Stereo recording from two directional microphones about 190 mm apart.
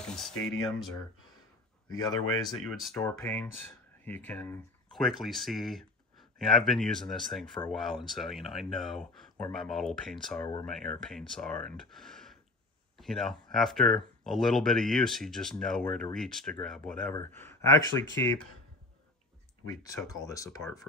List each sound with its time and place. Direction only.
0.0 s speech: 5° left (ahead or behind)
1.9 s speech: 20° left (ahead or behind)
2.4 s speech: centre (ahead or behind)
3.2 s speech: 10° left (ahead or behind)
19.7 s speech: 20° left (ahead or behind)